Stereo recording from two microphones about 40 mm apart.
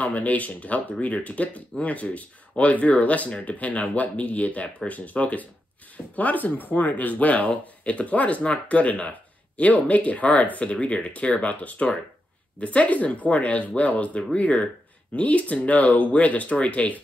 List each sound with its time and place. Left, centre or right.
0.0 s speech: left
9.6 s speech: left